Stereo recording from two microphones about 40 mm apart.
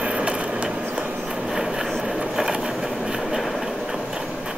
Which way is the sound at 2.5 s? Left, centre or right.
Centre.